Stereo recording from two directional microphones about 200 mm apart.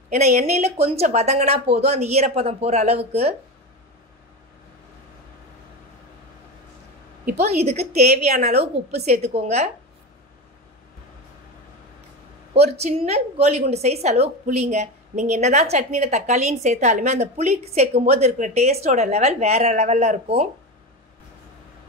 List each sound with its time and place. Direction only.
0.1 s a woman's voice: 35° right (ahead or behind)
7.3 s a woman's voice: 30° right (ahead or behind)
12.5 s a woman's voice: 30° right (ahead or behind)